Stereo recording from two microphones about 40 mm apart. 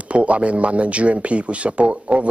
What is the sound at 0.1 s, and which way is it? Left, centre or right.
A man's voice, right.